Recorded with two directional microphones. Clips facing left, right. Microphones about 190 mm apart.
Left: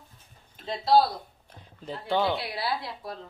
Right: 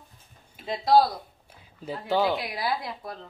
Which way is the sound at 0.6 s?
10° right (ahead or behind).